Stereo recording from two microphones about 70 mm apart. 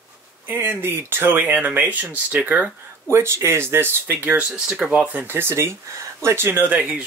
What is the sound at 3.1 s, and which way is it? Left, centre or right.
Speech, right.